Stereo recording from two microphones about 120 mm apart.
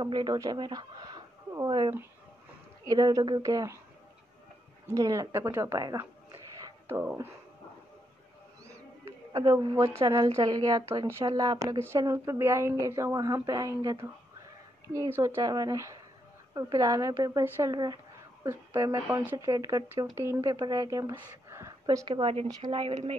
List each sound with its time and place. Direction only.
0.0 s speech: 35° right (ahead or behind)
2.9 s speech: 30° right (ahead or behind)
4.8 s speech: 25° right (ahead or behind)
6.6 s a sound: 20° right (ahead or behind)
9.3 s speech: 35° right (ahead or behind)
15.1 s speech: 20° right (ahead or behind)
15.4 s speech: 30° right (ahead or behind)
21.5 s a sound: 25° right (ahead or behind)
21.8 s a woman's voice: 40° right (ahead or behind)